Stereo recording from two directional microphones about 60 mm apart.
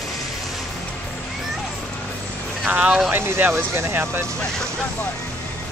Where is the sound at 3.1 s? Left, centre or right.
Right.